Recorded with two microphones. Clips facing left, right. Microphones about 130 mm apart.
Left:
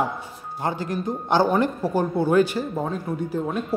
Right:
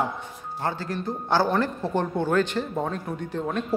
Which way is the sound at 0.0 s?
15° left (ahead or behind).